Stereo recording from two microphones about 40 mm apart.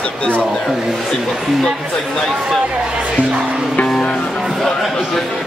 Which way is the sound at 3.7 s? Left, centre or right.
Left.